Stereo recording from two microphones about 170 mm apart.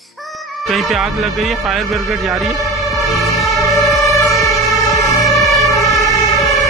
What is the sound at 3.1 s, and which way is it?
Emergency vehicle, centre (ahead or behind).